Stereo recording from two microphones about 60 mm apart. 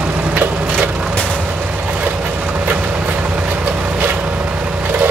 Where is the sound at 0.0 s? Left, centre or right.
Right.